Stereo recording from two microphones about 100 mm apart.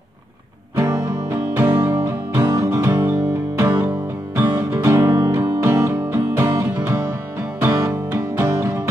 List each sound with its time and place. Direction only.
0.7 s music: 30° right (ahead or behind)
2.4 s music: 35° right (ahead or behind)